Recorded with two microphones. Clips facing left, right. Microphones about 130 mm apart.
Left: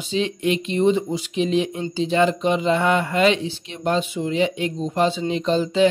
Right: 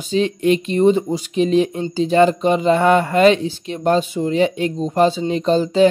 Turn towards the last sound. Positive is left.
turn(degrees=-40)  # may be behind; listen again after turning